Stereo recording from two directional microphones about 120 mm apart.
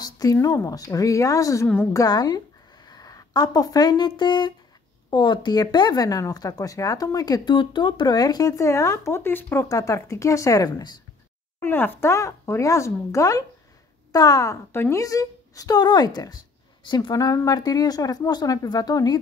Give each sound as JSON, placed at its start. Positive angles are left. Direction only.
{"t": 0.0, "sound": "speech", "side_deg": 30}
{"t": 11.6, "sound": "a woman's voice", "side_deg": 15}